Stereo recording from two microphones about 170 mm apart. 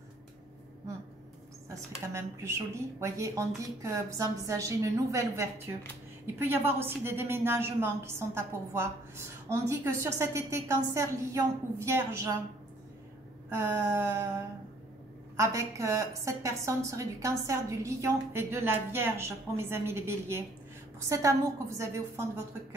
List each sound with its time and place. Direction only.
1.7 s a woman's voice: 15° right (ahead or behind)
13.5 s a woman's voice: 15° right (ahead or behind)
15.3 s a woman's voice: 15° right (ahead or behind)